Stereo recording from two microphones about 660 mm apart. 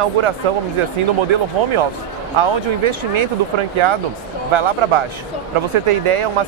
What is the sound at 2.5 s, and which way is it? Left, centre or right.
Speech, right.